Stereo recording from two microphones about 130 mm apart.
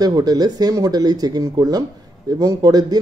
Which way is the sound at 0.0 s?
30° right (ahead or behind).